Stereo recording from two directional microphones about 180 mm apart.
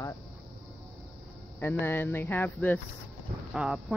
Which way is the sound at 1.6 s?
10° left (ahead or behind).